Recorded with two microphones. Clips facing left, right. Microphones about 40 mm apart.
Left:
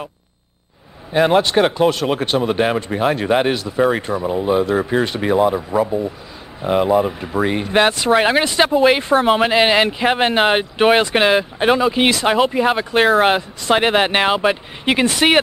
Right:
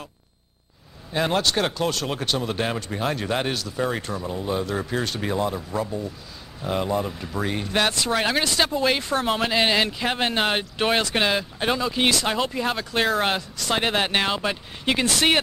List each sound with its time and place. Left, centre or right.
1.1 s speech: left
5.9 s speech: left
6.6 s speech: left